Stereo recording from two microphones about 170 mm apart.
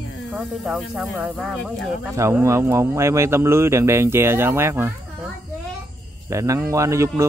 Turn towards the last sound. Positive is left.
turn(degrees=-15)  # may be behind; listen again after turning